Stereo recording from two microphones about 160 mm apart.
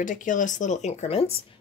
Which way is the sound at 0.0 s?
55° left (ahead or behind).